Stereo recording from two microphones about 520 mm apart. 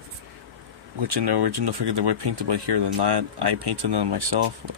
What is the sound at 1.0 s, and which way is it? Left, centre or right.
Speech, right.